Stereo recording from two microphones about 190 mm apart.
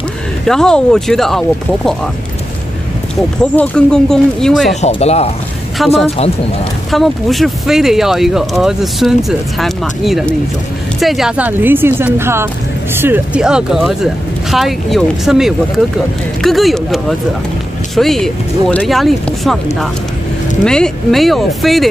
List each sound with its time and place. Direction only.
0.5 s speech: 5° left (ahead or behind)
3.5 s speech: 5° left (ahead or behind)
4.8 s speech: 35° left (ahead or behind)
5.8 s speech: centre (ahead or behind)
20.6 s speech: 5° left (ahead or behind)